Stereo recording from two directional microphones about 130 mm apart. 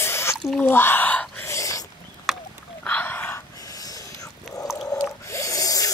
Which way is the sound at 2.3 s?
Centre (ahead or behind).